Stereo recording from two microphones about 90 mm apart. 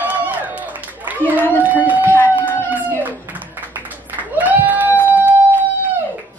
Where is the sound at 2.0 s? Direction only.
20° left (ahead or behind).